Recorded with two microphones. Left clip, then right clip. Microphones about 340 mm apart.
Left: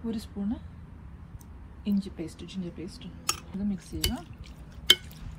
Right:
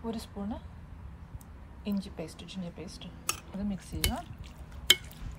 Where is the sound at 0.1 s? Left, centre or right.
Centre.